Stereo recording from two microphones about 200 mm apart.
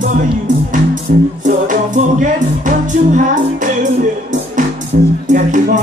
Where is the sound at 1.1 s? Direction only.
45° right (ahead or behind).